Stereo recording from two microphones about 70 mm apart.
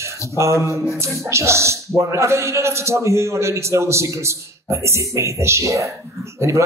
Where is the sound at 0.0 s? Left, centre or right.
Right.